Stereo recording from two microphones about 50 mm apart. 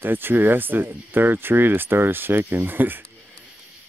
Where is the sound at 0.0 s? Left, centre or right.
Right.